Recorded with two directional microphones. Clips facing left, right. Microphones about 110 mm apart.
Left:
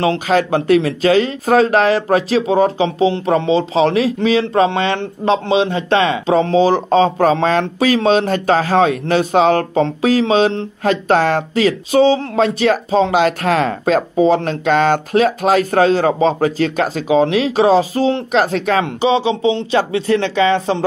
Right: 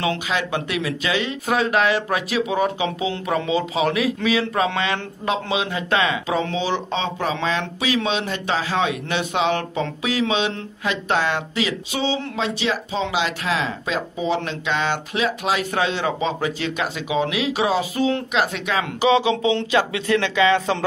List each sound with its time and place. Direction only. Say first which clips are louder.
0.0 s speech: left 8 dB; 40° left (ahead or behind)
18.9 s speech: left 3 dB; 30° left (ahead or behind)